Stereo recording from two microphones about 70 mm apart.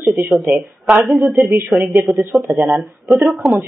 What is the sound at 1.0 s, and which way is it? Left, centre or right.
A woman's voice, centre.